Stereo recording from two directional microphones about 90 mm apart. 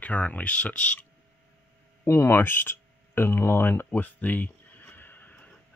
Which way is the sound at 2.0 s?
30° left (ahead or behind).